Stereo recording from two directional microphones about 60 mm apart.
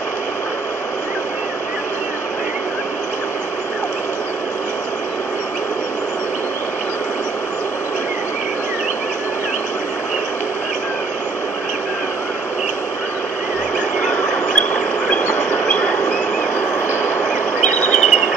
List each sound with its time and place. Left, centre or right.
14.0 s a sound: centre
15.6 s train: centre
17.6 s cricket: centre